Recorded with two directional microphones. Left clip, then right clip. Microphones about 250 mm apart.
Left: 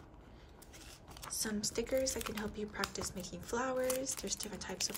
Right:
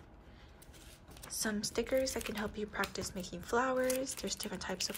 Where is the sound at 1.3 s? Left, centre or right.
Centre.